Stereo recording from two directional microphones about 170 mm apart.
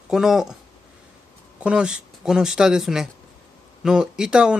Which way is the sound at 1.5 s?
5° right (ahead or behind).